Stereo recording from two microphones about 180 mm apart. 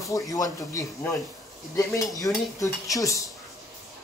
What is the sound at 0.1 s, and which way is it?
Speech, 20° left (ahead or behind).